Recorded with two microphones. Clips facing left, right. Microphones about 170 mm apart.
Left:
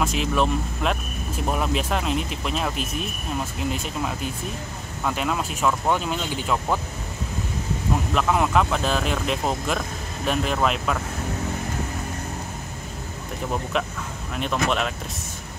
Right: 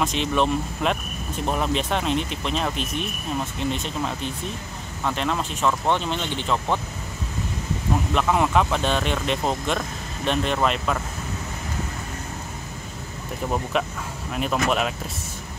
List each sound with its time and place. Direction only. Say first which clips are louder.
0.0 s speech: even; 5° left (ahead or behind)
8.1 s speech: even; centre (ahead or behind)
14.3 s speech: right 1 dB; 5° right (ahead or behind)